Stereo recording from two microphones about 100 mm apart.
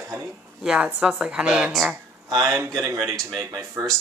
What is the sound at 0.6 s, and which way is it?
Speech, 10° right (ahead or behind).